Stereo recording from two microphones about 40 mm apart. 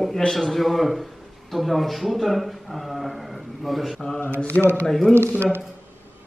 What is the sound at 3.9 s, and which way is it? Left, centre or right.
Mantra, centre.